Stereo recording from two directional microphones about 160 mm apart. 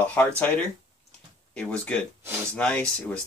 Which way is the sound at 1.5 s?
5° left (ahead or behind).